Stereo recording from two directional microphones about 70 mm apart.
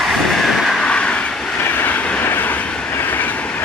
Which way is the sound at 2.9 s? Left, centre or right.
Left.